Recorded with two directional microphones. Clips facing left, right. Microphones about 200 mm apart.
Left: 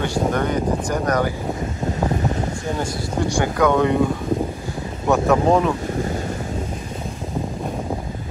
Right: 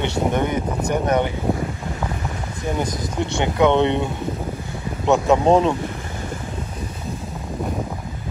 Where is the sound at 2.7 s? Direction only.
20° right (ahead or behind).